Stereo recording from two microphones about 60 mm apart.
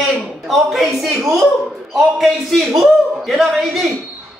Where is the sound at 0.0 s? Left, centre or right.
Centre.